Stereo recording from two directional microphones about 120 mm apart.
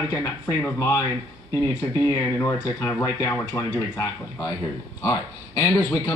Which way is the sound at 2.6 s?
20° left (ahead or behind).